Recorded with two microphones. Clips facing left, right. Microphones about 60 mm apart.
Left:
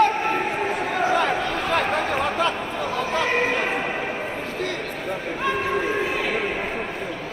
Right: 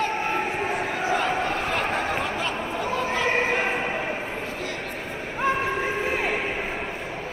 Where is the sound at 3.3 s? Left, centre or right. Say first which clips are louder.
Left 1 dB; right.